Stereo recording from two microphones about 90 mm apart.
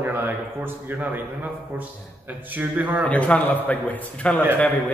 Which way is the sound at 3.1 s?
15° left (ahead or behind).